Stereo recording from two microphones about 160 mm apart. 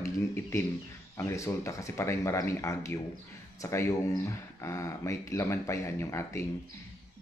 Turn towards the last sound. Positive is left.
turn(degrees=15)  # may be behind; listen again after turning